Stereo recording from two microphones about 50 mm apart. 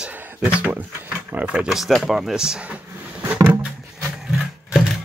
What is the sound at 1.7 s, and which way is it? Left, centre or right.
Speech, centre.